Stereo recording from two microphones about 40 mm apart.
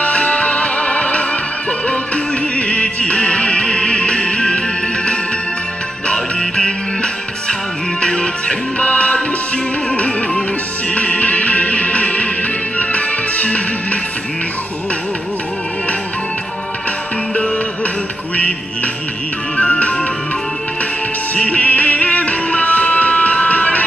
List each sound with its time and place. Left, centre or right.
0.0 s music: left
2.5 s music: left
6.1 s music: centre
8.8 s music: left
11.0 s music: left
19.5 s music: left
21.5 s music: left